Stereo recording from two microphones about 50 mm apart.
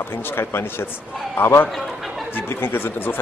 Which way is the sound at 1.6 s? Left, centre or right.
Centre.